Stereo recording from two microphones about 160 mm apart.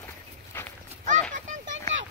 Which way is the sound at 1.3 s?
50° right (ahead or behind).